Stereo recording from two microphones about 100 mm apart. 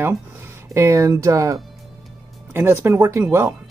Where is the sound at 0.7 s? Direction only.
30° right (ahead or behind).